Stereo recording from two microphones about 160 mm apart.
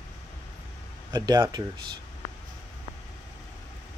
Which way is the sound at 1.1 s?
25° right (ahead or behind).